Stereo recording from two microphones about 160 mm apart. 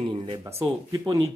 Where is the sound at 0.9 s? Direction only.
20° right (ahead or behind).